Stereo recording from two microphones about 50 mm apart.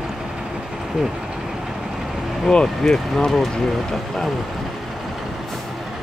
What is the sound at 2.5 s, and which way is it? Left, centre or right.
Speech, centre.